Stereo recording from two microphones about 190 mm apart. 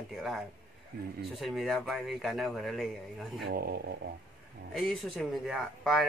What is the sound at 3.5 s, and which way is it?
Speech, 55° right (ahead or behind).